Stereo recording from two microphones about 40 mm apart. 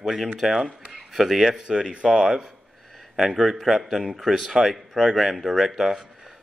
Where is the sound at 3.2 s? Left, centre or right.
Centre.